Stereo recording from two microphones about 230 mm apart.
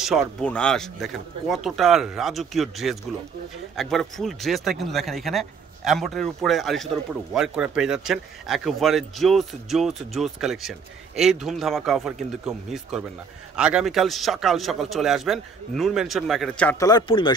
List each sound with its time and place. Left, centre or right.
0.0 s speech: centre
16.9 s speech: centre